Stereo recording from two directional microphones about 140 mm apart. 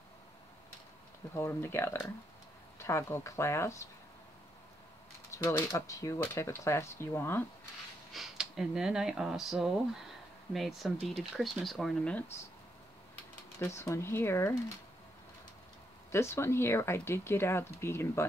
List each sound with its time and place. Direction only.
1.3 s speech: 20° left (ahead or behind)
5.3 s speech: 20° left (ahead or behind)
8.1 s speech: centre (ahead or behind)
13.6 s speech: 20° left (ahead or behind)
16.1 s speech: 20° left (ahead or behind)